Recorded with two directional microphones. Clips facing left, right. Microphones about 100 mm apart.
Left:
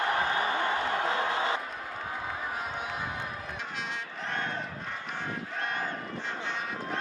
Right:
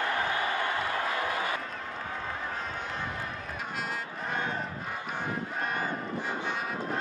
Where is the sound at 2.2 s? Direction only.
10° left (ahead or behind).